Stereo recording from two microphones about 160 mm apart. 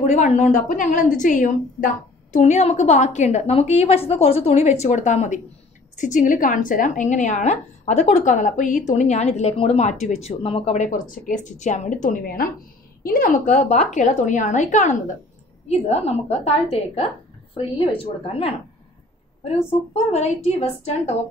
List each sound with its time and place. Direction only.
0.0 s a woman's voice: 45° left (ahead or behind)
20.1 s a woman's voice: 40° left (ahead or behind)